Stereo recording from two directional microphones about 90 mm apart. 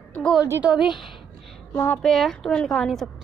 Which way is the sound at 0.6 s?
10° right (ahead or behind).